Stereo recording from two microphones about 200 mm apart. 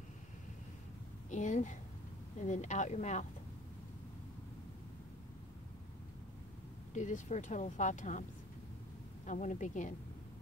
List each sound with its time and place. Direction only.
1.3 s speech: 40° left (ahead or behind)
6.9 s speech: 40° left (ahead or behind)